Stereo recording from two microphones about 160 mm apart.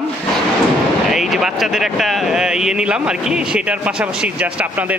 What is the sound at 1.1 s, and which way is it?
Speech, centre (ahead or behind).